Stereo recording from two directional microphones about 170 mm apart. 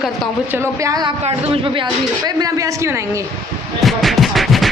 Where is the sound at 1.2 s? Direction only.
30° right (ahead or behind).